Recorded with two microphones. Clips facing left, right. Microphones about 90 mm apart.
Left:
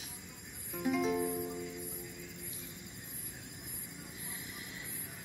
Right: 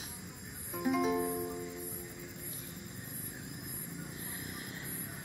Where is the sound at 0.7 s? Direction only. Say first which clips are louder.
Right 1 dB; 5° right (ahead or behind).